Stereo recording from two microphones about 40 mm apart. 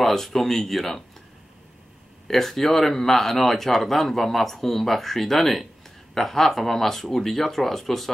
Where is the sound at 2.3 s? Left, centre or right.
Centre.